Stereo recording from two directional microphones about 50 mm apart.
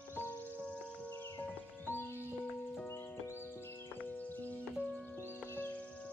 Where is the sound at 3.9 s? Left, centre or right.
Left.